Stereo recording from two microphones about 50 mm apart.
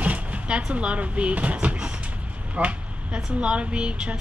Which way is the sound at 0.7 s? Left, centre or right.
Right.